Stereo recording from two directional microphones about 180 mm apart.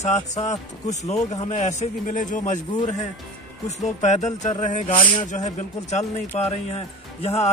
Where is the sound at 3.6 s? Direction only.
40° left (ahead or behind).